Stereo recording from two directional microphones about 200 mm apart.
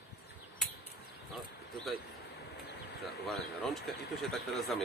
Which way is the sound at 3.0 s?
Centre (ahead or behind).